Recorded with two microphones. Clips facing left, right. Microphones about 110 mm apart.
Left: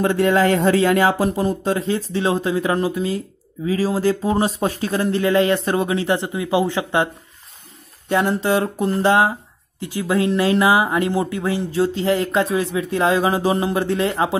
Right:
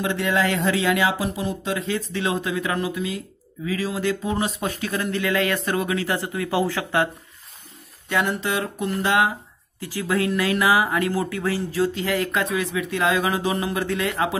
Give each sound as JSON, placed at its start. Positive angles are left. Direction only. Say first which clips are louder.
{"t": 0.0, "sound": "speech", "louder": "left 6 dB", "side_deg": 40}
{"t": 8.1, "sound": "speech", "louder": "left 5 dB", "side_deg": 30}
{"t": 9.8, "sound": "speech", "louder": "left 4 dB", "side_deg": 20}